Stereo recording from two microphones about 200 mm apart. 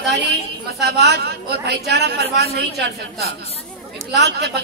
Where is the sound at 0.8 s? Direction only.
55° right (ahead or behind).